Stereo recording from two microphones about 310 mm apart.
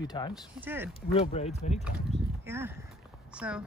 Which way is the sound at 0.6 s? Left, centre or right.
Centre.